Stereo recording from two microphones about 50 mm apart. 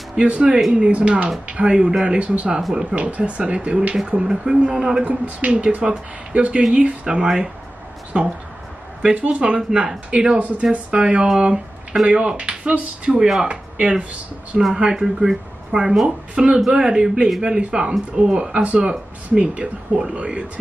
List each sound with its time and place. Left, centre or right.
0.2 s speech: right
2.1 s speech: right
5.0 s speech: right
7.2 s speech: centre; by 13.9 s right
14.8 s speech: centre